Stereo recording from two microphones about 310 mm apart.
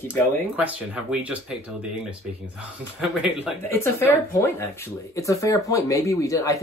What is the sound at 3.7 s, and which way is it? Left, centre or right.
Speech, centre.